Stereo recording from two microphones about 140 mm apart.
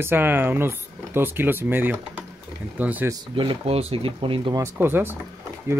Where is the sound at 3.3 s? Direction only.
35° right (ahead or behind).